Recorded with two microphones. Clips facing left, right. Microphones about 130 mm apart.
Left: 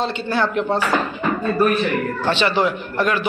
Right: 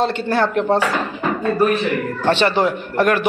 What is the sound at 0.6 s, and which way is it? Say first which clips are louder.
Speech: right 3 dB; 55° right (ahead or behind).